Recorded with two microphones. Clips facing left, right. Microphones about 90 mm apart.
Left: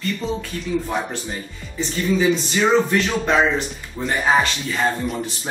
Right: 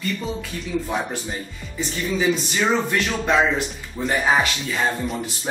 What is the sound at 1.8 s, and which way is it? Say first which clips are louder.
Speech: left 4 dB; 5° right (ahead or behind).